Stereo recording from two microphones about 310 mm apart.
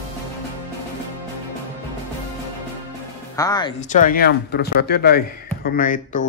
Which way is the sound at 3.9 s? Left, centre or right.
Left.